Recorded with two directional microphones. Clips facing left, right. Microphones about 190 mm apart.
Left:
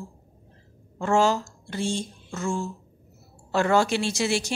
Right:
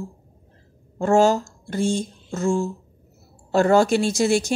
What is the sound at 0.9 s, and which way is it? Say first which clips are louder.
A woman's voice: right 5 dB; 40° right (ahead or behind).